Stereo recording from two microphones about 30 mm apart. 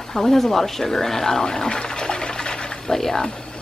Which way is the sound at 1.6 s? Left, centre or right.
Left.